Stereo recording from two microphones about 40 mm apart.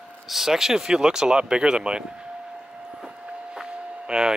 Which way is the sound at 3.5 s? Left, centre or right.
Right.